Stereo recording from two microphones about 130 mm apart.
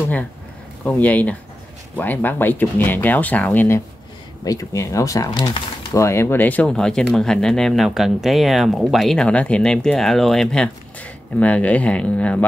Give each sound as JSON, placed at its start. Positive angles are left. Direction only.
{"t": 0.8, "sound": "speech", "side_deg": 10}